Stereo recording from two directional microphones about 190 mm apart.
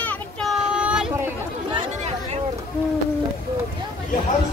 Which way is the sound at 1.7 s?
35° right (ahead or behind).